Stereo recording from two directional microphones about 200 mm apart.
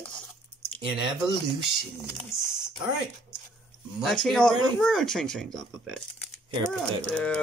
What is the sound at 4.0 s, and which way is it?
Speech, centre (ahead or behind).